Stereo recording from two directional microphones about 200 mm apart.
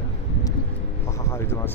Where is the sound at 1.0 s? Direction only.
15° left (ahead or behind).